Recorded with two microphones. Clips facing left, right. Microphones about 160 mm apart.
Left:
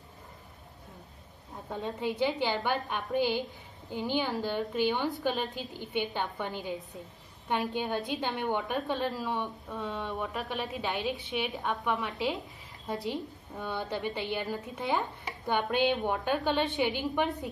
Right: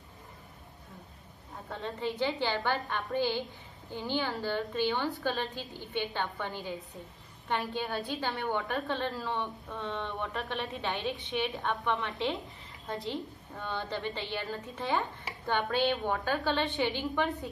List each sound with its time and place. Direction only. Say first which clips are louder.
1.7 s a woman's voice: left 2 dB; 15° left (ahead or behind)